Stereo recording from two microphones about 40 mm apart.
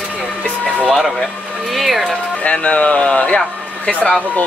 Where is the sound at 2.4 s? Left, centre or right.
Left.